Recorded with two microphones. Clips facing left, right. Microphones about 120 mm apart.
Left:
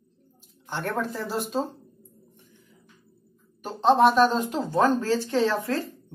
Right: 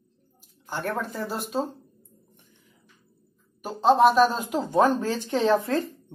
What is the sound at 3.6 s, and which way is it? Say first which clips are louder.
Speech: right 1 dB; centre (ahead or behind).